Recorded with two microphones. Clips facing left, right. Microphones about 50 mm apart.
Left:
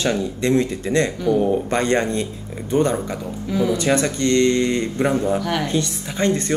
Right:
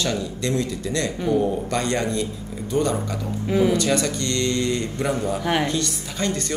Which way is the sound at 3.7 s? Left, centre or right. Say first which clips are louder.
Left 2 dB; left.